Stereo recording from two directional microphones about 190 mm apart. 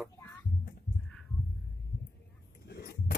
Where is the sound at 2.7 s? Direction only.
55° left (ahead or behind).